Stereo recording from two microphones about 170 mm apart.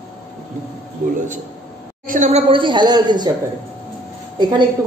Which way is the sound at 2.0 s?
45° right (ahead or behind).